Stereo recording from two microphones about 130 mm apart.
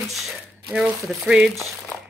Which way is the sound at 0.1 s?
Centre (ahead or behind).